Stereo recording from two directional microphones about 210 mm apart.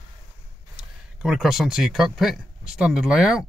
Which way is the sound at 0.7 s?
Centre (ahead or behind).